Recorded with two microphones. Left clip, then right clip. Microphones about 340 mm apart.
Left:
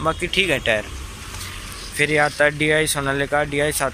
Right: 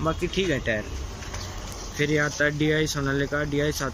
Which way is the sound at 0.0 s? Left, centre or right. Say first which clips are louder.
Left 6 dB; centre.